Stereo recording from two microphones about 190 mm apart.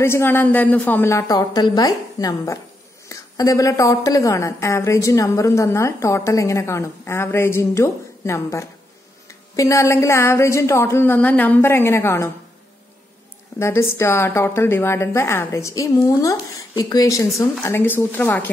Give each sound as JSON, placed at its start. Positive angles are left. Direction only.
{"t": 0.0, "sound": "a woman's voice", "side_deg": 10}
{"t": 13.6, "sound": "a woman's voice", "side_deg": 15}